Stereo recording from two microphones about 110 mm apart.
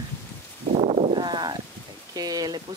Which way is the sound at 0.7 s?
65° right (ahead or behind).